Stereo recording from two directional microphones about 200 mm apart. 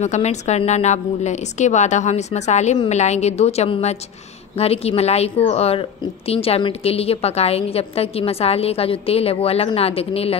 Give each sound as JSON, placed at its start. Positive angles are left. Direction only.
{"t": 0.0, "sound": "a woman's voice", "side_deg": 35}